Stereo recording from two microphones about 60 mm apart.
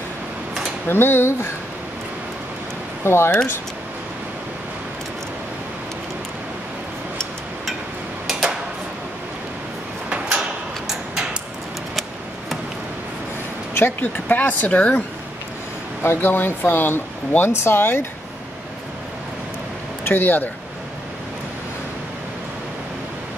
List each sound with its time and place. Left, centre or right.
0.8 s speech: left
3.0 s speech: left
8.3 s tick-tock: centre
10.0 s drawer open or close: centre
13.7 s speech: left
16.0 s speech: left
20.1 s speech: left